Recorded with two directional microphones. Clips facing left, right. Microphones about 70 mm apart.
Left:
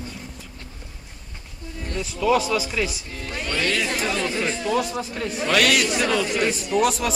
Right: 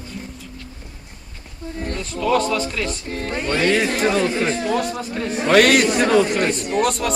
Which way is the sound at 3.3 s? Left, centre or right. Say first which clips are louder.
Right 6 dB; right.